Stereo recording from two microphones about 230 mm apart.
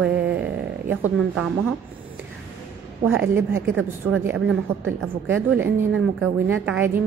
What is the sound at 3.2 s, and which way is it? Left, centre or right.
A woman's voice, centre.